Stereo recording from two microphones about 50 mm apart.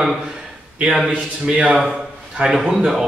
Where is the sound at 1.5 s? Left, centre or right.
Right.